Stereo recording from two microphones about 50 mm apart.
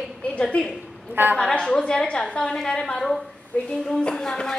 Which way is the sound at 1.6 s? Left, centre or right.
Centre.